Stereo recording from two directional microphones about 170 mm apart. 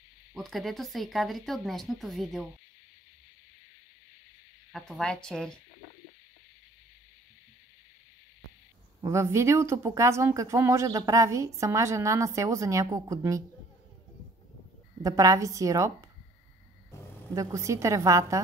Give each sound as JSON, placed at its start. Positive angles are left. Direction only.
{"t": 0.3, "sound": "speech", "side_deg": 0}
{"t": 4.7, "sound": "speech", "side_deg": 5}
{"t": 9.0, "sound": "speech", "side_deg": -15}
{"t": 15.0, "sound": "a woman's voice", "side_deg": -20}
{"t": 17.4, "sound": "speech", "side_deg": -20}